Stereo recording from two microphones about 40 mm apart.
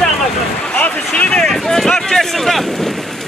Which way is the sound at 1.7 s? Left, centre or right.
Centre.